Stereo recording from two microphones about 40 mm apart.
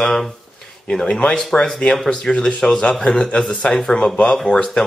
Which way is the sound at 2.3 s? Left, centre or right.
Left.